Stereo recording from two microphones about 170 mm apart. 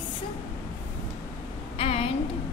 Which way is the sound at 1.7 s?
35° left (ahead or behind).